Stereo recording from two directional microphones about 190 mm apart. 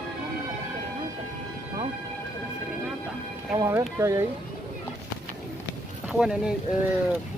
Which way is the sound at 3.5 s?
15° right (ahead or behind).